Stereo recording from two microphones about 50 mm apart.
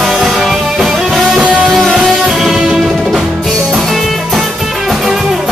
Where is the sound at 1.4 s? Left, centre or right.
Right.